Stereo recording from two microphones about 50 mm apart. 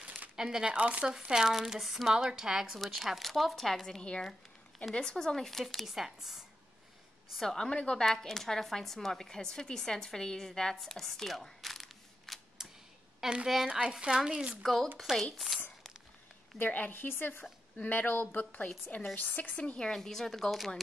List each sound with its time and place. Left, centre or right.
0.4 s speech: centre
0.7 s speech: right
1.3 s a woman's voice: centre
4.2 s a sound: centre
4.9 s a woman's voice: centre
7.3 s speech: centre
12.6 s a sound: centre
13.2 s a woman's voice: centre
13.7 s speech: centre
14.6 s a woman's voice: centre
16.5 s a woman's voice: left
17.4 s a woman's voice: left
19.9 s a woman's voice: centre